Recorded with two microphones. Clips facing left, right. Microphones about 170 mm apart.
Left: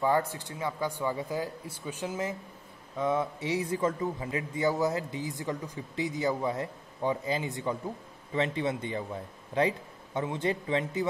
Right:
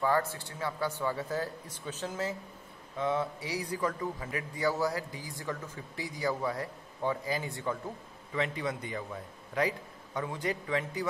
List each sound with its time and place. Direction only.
0.0 s a man's voice: 15° left (ahead or behind)